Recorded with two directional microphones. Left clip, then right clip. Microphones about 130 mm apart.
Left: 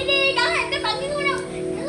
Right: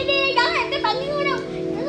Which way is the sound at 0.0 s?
15° right (ahead or behind).